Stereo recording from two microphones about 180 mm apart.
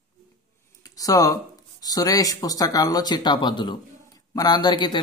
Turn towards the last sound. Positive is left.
turn(degrees=25)  # may be behind; listen again after turning